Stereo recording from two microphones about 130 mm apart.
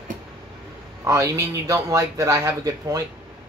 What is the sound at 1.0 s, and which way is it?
Speech, 25° right (ahead or behind).